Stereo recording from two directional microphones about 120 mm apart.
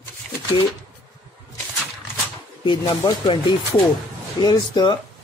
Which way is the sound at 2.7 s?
40° left (ahead or behind).